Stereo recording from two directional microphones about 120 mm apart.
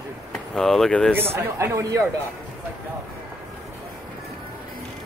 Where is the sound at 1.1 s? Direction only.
20° right (ahead or behind).